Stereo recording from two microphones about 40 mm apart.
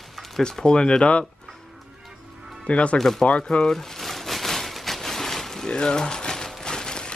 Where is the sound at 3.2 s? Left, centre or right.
Left.